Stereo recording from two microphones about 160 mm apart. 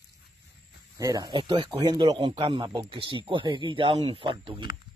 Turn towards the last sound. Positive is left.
turn(degrees=-35)  # may be behind; listen again after turning